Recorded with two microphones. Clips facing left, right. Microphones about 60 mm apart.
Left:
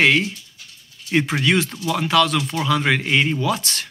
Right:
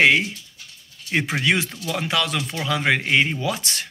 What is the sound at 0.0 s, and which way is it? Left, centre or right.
Speech, centre.